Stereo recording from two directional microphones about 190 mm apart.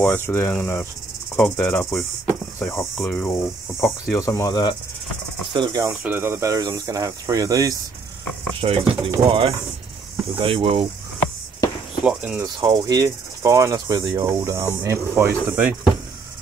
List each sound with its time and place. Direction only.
0.0 s speech: 10° left (ahead or behind)
5.5 s speech: 20° right (ahead or behind)
8.5 s cricket: 30° right (ahead or behind)
9.2 s speech: 30° right (ahead or behind)
10.3 s cricket: 30° right (ahead or behind)
12.0 s speech: 5° right (ahead or behind)
12.5 s cricket: 20° right (ahead or behind)
14.8 s speech: 15° right (ahead or behind)
15.3 s speech: 5° right (ahead or behind)